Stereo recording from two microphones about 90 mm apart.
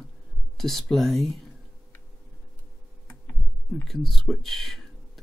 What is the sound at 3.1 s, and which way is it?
Tick-tock, 25° left (ahead or behind).